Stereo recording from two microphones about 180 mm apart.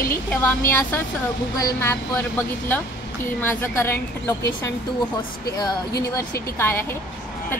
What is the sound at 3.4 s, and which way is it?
Speech, 10° left (ahead or behind).